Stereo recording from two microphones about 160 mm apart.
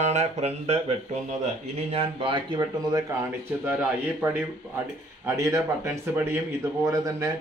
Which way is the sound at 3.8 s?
15° right (ahead or behind).